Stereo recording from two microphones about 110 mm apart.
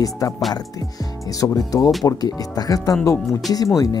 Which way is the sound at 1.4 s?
30° left (ahead or behind).